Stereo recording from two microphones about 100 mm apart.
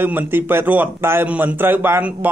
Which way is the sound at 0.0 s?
20° right (ahead or behind).